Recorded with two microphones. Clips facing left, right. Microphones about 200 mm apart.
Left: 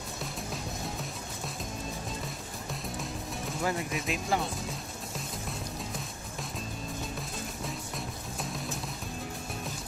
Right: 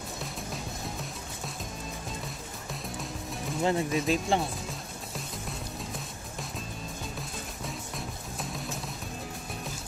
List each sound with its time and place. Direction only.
2.7 s music: centre (ahead or behind)
3.6 s speech: 30° right (ahead or behind)
7.2 s music: centre (ahead or behind)